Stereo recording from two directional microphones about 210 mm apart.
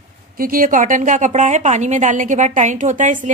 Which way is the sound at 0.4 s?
40° right (ahead or behind).